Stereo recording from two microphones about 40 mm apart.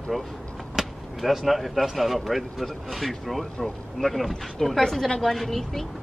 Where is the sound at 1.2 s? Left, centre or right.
Centre.